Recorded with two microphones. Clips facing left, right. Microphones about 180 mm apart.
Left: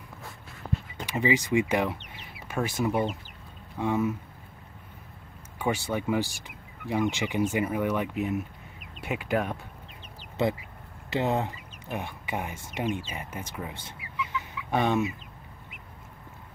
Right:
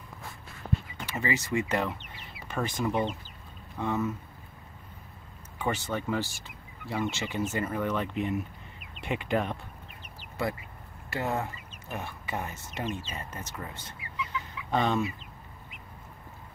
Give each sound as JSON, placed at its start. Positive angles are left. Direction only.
{"t": 1.0, "sound": "speech", "side_deg": 15}
{"t": 5.6, "sound": "speech", "side_deg": 10}
{"t": 11.1, "sound": "speech", "side_deg": 20}